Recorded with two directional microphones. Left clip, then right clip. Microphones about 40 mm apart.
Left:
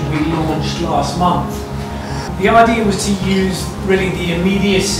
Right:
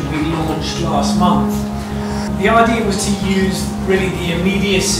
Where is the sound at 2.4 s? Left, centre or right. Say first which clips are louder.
Left 2 dB; centre.